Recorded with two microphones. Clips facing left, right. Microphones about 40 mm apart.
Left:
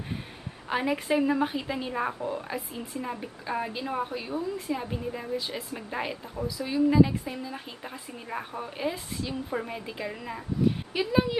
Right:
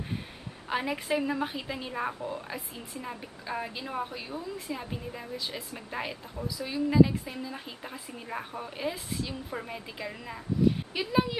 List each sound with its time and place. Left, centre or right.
0.7 s a woman's voice: centre